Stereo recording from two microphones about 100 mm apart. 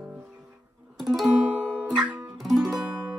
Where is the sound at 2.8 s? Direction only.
15° right (ahead or behind).